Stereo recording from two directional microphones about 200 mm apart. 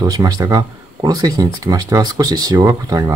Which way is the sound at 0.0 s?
20° right (ahead or behind).